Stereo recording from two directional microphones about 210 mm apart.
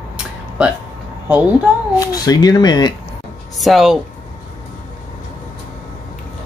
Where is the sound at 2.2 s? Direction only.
20° left (ahead or behind).